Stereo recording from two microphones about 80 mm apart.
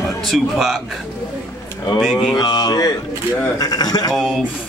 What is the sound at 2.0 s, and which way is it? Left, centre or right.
Speech, centre.